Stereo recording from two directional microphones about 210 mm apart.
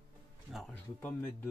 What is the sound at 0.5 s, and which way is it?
Speech, 5° left (ahead or behind).